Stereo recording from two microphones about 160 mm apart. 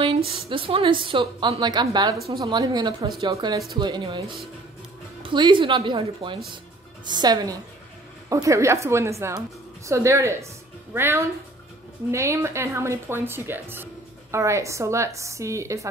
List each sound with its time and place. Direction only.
0.0 s a woman's voice: 35° right (ahead or behind)